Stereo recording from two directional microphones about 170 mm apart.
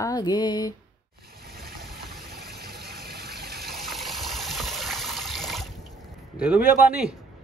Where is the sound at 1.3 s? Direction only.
65° right (ahead or behind).